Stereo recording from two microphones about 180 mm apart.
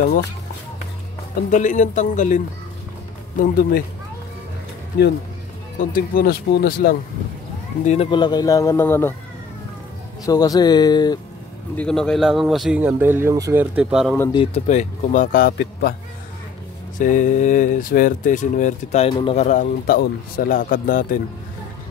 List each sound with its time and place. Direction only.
0.0 s speech: 60° left (ahead or behind)
1.5 s speech: 45° left (ahead or behind)
5.8 s speech: 50° left (ahead or behind)
7.8 s speech: 40° left (ahead or behind)
8.1 s speech: 25° left (ahead or behind)
10.2 s speech: 20° left (ahead or behind)
11.7 s speech: 5° left (ahead or behind)
14.3 s speech: 35° left (ahead or behind); by 15.9 s 65° left (ahead or behind)
17.0 s speech: 45° left (ahead or behind)